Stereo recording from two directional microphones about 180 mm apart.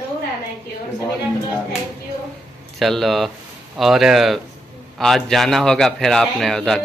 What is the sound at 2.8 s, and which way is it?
A man's voice, centre (ahead or behind).